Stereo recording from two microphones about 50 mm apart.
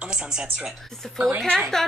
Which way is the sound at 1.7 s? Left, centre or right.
Centre.